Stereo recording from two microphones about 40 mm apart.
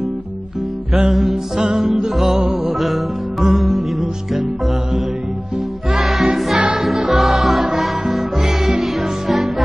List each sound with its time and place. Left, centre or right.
0.9 s music: centre
5.9 s music: centre